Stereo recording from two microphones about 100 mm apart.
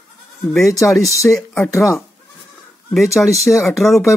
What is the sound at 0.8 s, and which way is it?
Speech, centre (ahead or behind).